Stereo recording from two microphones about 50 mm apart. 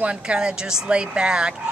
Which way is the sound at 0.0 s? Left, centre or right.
Right.